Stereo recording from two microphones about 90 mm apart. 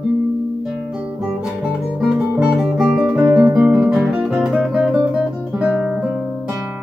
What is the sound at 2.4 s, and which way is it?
Guitar, 5° right (ahead or behind).